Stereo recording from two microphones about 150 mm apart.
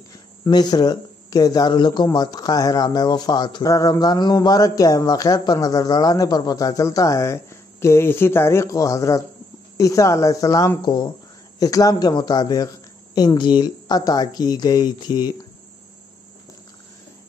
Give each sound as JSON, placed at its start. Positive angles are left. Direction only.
{"t": 0.4, "sound": "speech", "side_deg": 25}